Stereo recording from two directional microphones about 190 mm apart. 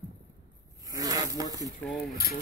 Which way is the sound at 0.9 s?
20° right (ahead or behind).